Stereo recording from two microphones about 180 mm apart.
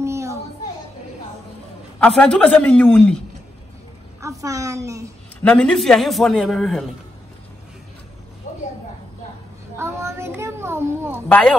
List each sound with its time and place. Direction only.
0.0 s children playing: 15° right (ahead or behind)
2.0 s a man's voice: 5° left (ahead or behind)
4.2 s a woman's voice: 15° right (ahead or behind)
5.4 s a man's voice: 5° left (ahead or behind)
8.5 s a sound: 40° left (ahead or behind)
9.8 s a sound: 15° right (ahead or behind)
11.2 s a man's voice: 5° left (ahead or behind)